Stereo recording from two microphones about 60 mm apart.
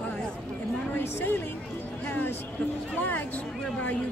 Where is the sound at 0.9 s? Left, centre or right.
Left.